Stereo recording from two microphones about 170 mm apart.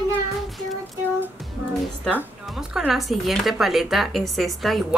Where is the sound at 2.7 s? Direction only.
5° right (ahead or behind).